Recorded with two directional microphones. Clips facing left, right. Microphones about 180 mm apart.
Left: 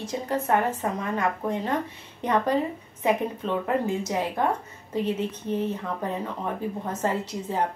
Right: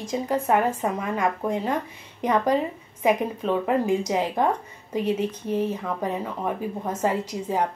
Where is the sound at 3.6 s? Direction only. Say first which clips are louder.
Right 3 dB; 15° right (ahead or behind).